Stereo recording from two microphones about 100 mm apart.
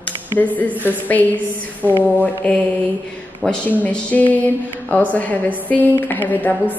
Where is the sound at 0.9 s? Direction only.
15° left (ahead or behind).